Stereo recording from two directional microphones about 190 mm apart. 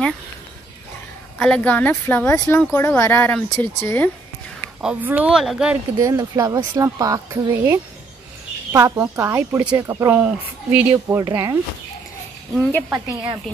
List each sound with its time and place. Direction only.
1.4 s speech: 5° left (ahead or behind)
4.8 s speech: 10° right (ahead or behind)
5.9 s speech: 20° right (ahead or behind)